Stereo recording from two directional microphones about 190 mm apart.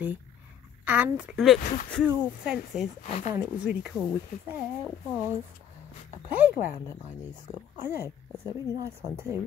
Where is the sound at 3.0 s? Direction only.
35° left (ahead or behind).